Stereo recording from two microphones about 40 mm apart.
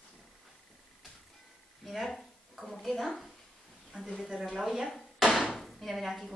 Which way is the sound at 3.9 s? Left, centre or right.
Centre.